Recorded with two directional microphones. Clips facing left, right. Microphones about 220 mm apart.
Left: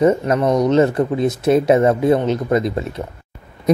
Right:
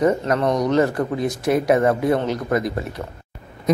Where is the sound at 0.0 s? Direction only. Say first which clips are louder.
Left 3 dB; 20° left (ahead or behind).